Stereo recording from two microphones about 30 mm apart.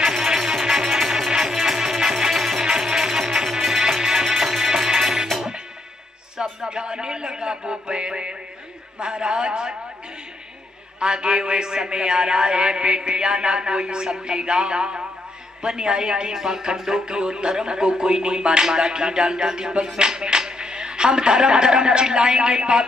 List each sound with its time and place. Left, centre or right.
0.1 s music: centre
6.3 s music: right
9.0 s a man's voice: right
11.0 s a man's voice: right
16.3 s a man's voice: centre